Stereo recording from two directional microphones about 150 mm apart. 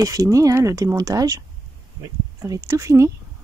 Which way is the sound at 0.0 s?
20° right (ahead or behind).